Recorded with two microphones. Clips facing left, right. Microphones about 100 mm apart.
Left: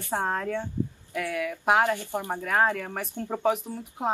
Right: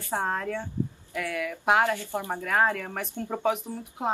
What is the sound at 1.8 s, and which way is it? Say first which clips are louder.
Speech: left 1 dB; 15° left (ahead or behind).